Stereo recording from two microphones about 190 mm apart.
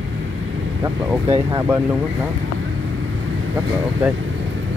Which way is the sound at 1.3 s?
15° right (ahead or behind).